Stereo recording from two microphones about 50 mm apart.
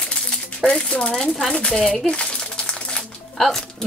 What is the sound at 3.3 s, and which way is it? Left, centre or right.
Music, centre.